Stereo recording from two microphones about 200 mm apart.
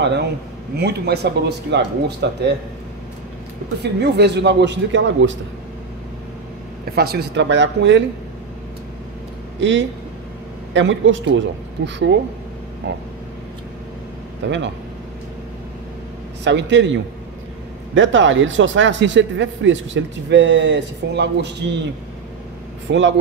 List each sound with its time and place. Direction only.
0.0 s a man's voice: 55° right (ahead or behind)
3.8 s speech: 55° right (ahead or behind)
7.0 s speech: 55° right (ahead or behind)
9.6 s speech: 65° right (ahead or behind)
14.4 s speech: 65° right (ahead or behind)
16.4 s speech: 65° right (ahead or behind)
22.8 s speech: 65° right (ahead or behind)